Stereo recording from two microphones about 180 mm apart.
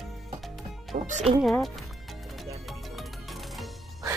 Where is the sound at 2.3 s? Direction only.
Centre (ahead or behind).